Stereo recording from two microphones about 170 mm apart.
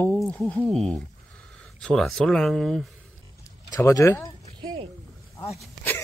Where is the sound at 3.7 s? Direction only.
20° left (ahead or behind).